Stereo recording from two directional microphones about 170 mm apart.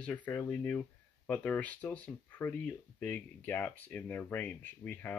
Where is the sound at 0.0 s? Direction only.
10° left (ahead or behind).